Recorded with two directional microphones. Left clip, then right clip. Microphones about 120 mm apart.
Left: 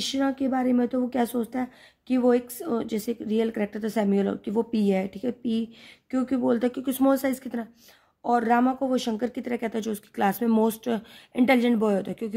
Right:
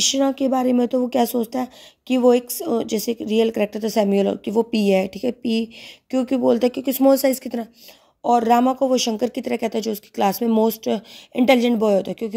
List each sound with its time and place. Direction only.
0.0 s speech: 50° right (ahead or behind); by 12.3 s 25° right (ahead or behind)